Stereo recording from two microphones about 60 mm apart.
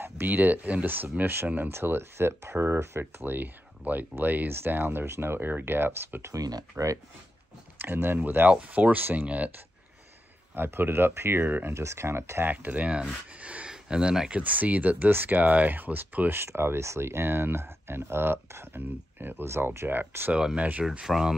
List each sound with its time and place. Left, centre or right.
0.0 s speech: right
3.3 s speech: right
6.3 s speech: right
7.8 s speech: right
8.5 s speech: right
10.5 s speech: right
11.7 s speech: right
12.4 s speech: right
14.4 s speech: right
16.3 s speech: right
19.4 s speech: right
20.3 s speech: centre